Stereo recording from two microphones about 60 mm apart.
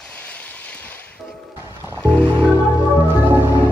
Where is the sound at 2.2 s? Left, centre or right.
Right.